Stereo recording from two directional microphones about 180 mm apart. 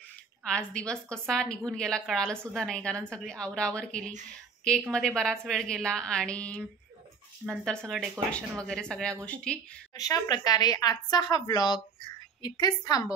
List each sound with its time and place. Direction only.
0.4 s a woman's voice: 5° left (ahead or behind)
9.9 s a woman's voice: 20° left (ahead or behind)